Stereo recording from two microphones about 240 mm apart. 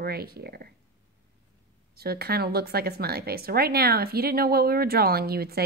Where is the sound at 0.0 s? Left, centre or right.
Right.